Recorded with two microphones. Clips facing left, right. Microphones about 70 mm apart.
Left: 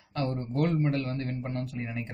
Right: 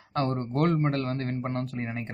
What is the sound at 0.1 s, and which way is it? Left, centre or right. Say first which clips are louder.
A man's voice: right 3 dB; right.